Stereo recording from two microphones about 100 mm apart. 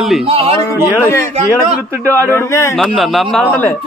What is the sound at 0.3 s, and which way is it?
Speech, 75° right (ahead or behind).